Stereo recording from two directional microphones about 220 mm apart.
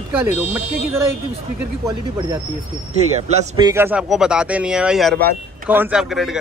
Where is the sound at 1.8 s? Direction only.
15° right (ahead or behind).